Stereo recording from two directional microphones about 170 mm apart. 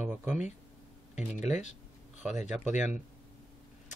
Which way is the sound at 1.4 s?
45° left (ahead or behind).